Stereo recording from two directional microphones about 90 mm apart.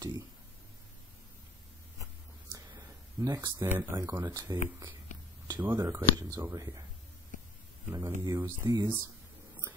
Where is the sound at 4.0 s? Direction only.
35° right (ahead or behind).